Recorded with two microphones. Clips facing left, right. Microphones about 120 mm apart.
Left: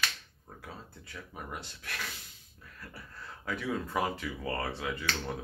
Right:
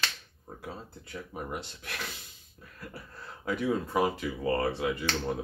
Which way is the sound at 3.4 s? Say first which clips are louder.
Right 5 dB; 15° right (ahead or behind).